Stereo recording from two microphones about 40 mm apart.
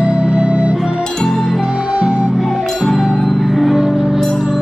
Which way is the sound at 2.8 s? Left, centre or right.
Centre.